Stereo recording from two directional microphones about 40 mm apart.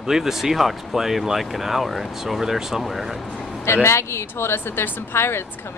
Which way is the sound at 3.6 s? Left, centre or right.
Left.